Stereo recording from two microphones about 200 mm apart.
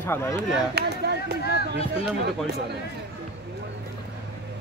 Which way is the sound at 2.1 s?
55° right (ahead or behind).